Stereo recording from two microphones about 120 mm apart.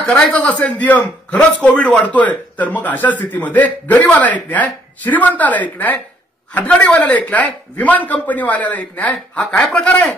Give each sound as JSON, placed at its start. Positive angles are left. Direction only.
{"t": 0.0, "sound": "speech", "side_deg": 10}